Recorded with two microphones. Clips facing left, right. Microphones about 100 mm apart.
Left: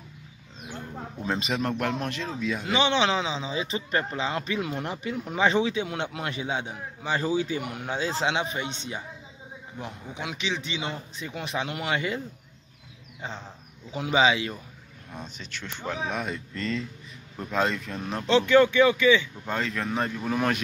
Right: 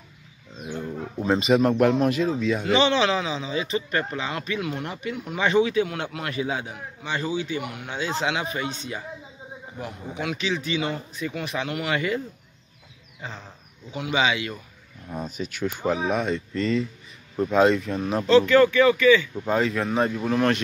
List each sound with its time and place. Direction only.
0.7 s speech: 5° right (ahead or behind)
2.7 s speech: 20° left (ahead or behind)
10.1 s speech: 20° left (ahead or behind)
13.9 s speech: 35° left (ahead or behind)
15.1 s speech: 10° right (ahead or behind)
16.2 s speech: 5° left (ahead or behind)
18.3 s speech: 20° left (ahead or behind)
19.4 s speech: 5° right (ahead or behind)